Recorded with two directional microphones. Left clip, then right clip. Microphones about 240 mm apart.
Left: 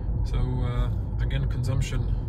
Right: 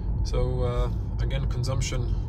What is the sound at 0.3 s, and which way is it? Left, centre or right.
Speech, centre.